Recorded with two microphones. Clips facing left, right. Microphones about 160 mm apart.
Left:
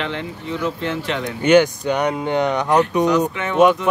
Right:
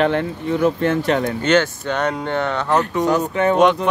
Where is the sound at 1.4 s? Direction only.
15° left (ahead or behind).